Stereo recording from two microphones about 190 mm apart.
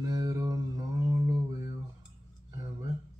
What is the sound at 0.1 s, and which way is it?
Mantra, 20° right (ahead or behind).